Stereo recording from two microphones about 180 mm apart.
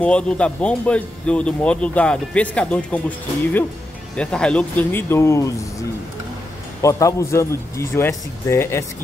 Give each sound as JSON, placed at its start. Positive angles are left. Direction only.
{"t": 0.0, "sound": "speech", "side_deg": 5}
{"t": 6.8, "sound": "speech", "side_deg": 15}